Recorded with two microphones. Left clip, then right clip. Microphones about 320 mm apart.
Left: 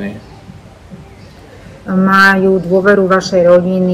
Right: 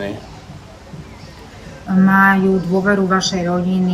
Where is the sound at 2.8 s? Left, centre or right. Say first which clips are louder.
Left 6 dB; centre.